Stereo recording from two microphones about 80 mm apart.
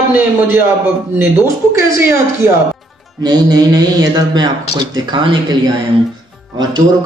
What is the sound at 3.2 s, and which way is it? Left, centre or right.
A man's voice, right.